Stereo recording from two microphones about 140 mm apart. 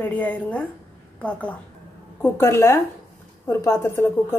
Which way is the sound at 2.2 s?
20° left (ahead or behind).